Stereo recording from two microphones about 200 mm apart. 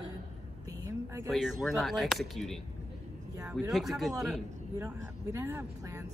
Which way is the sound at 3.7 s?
Centre (ahead or behind).